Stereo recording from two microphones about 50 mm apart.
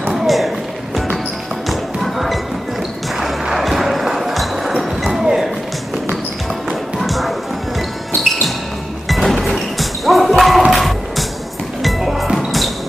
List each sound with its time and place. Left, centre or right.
0.1 s a sound: centre
1.7 s music: centre
7.0 s music: centre